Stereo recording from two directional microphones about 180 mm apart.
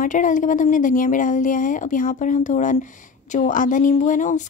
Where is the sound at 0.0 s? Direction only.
45° left (ahead or behind).